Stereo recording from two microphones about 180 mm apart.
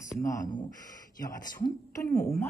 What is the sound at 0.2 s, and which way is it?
Speech, 20° left (ahead or behind).